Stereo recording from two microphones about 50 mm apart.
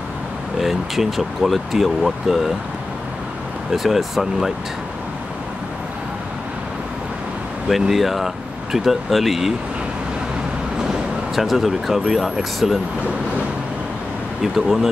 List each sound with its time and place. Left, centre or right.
0.6 s speech: centre
3.7 s speech: centre
7.9 s speech: centre
10.8 s speech: centre
14.4 s speech: centre